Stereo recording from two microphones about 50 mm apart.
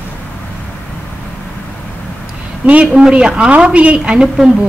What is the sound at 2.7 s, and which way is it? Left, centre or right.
A woman's voice, right.